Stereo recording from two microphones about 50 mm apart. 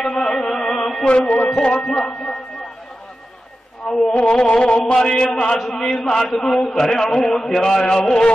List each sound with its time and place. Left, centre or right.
0.0 s music: centre
1.2 s music: left
1.8 s a man's voice: centre
3.8 s a man's voice: centre
4.2 s a sound: left
5.0 s a man's voice: centre